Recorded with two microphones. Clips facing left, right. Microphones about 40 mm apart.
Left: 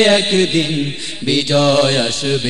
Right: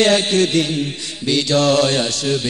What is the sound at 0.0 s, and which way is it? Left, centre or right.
Music, left.